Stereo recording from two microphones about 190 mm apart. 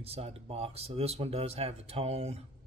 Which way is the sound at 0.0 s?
30° right (ahead or behind).